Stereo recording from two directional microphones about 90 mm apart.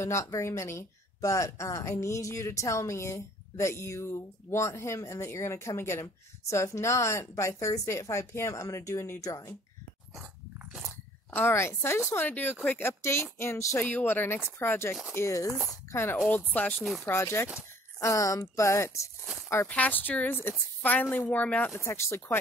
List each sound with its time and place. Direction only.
0.0 s speech: 35° left (ahead or behind)
11.3 s speech: 25° left (ahead or behind)
13.7 s speech: 20° left (ahead or behind)
16.3 s speech: 20° left (ahead or behind)
17.0 s speech: 30° left (ahead or behind)
19.7 s speech: 20° left (ahead or behind)
21.7 s speech: 30° left (ahead or behind)